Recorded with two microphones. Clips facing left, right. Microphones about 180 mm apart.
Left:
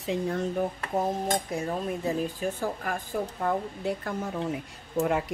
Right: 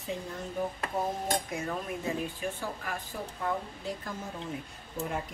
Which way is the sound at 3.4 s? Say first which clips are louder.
Left 3 dB; 65° left (ahead or behind).